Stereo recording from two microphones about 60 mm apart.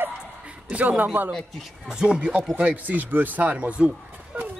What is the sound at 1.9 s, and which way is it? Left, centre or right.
Speech, centre.